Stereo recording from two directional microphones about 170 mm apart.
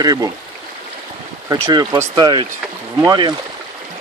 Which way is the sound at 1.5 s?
25° right (ahead or behind).